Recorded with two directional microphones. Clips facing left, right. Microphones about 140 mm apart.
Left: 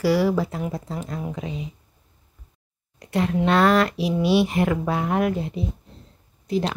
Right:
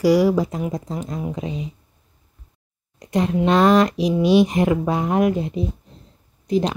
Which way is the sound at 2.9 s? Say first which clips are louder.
Right 2 dB; 20° right (ahead or behind).